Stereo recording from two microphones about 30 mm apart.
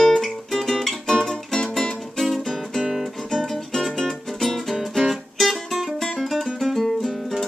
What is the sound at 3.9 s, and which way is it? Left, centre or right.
Music, centre.